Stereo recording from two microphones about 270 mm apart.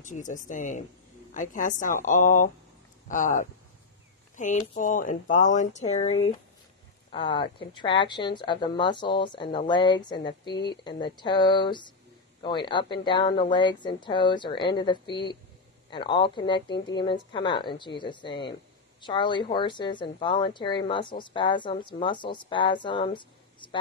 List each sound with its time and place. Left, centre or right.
0.0 s speech: left